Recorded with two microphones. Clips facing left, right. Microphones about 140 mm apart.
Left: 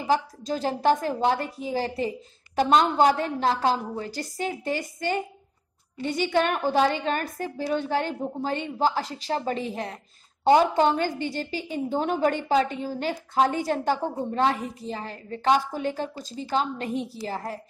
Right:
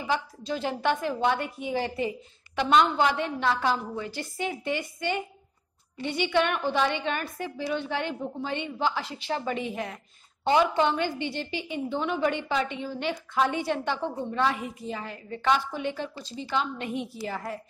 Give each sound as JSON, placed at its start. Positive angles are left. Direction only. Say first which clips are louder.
{"t": 0.0, "sound": "a woman's voice", "louder": "left 5 dB", "side_deg": 40}